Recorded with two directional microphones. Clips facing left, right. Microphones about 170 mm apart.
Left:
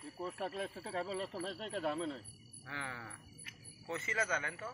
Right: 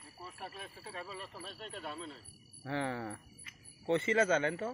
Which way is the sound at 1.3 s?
90° left.